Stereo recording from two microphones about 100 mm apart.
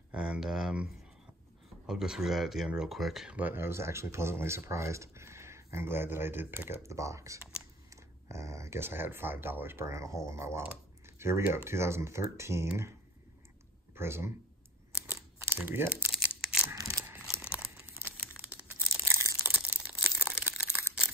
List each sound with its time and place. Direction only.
0.1 s speech: 10° right (ahead or behind)
1.9 s speech: 5° right (ahead or behind)
3.3 s speech: 20° right (ahead or behind)
13.9 s speech: 25° right (ahead or behind)
15.4 s speech: 20° right (ahead or behind)
16.1 s crumpling: 5° right (ahead or behind)
18.5 s crumpling: 20° right (ahead or behind)
19.4 s a sound: 15° right (ahead or behind)